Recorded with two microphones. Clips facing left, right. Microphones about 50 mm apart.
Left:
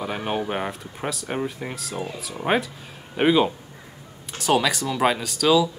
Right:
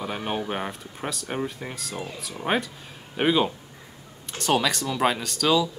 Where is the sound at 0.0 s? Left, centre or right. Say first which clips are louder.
Left 3 dB; centre.